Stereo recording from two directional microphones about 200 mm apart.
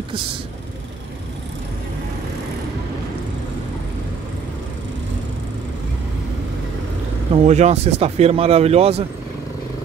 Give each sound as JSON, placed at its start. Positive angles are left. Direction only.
{"t": 7.3, "sound": "speech", "side_deg": -35}